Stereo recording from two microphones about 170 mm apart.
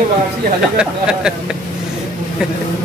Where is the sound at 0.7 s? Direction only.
5° right (ahead or behind).